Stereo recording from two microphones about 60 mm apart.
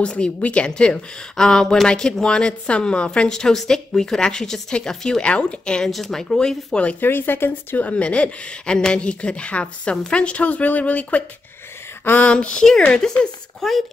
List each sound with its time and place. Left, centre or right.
0.0 s speech: centre
5.9 s speech: centre
7.0 s speech: left
7.8 s a woman's voice: left
12.0 s speech: left
12.3 s speech: centre